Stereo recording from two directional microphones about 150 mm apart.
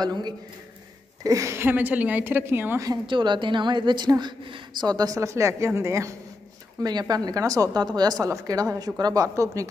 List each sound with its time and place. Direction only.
0.0 s a woman's voice: 30° right (ahead or behind)